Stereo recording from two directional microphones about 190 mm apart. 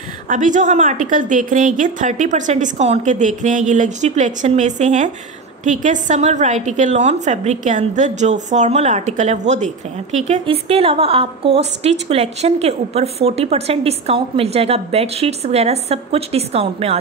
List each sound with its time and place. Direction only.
0.3 s a woman's voice: 40° right (ahead or behind)